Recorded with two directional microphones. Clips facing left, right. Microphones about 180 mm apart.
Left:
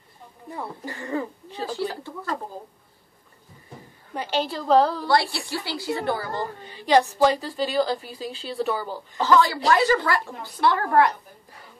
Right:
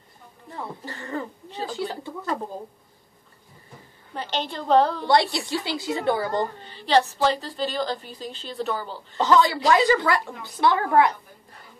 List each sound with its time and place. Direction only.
0.6 s a woman's voice: 10° left (ahead or behind)
4.1 s a woman's voice: 10° left (ahead or behind)
5.0 s a woman's voice: 20° right (ahead or behind)
6.7 s a woman's voice: 10° left (ahead or behind)
9.2 s speech: 15° right (ahead or behind)